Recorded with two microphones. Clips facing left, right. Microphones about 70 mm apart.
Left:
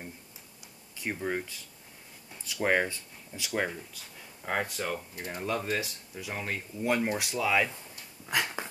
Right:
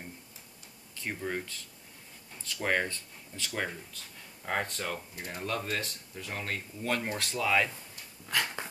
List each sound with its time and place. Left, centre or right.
0.9 s speech: centre
8.3 s dog: centre